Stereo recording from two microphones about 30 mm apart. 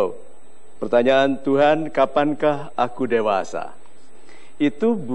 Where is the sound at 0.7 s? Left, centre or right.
Centre.